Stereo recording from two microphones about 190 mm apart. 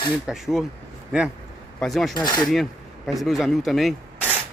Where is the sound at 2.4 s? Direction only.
Centre (ahead or behind).